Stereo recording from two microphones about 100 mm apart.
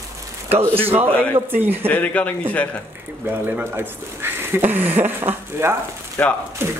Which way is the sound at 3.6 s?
20° right (ahead or behind).